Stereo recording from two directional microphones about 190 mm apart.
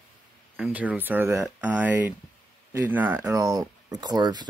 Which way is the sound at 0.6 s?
10° right (ahead or behind).